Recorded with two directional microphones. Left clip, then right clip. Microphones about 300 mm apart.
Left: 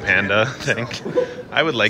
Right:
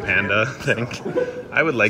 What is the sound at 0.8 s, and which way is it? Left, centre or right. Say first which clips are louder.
Speech: left 1 dB; left.